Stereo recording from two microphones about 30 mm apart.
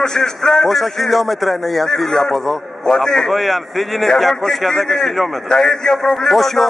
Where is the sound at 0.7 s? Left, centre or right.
Centre.